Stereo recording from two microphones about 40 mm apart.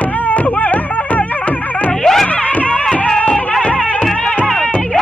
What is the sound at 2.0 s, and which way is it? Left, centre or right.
Music, centre.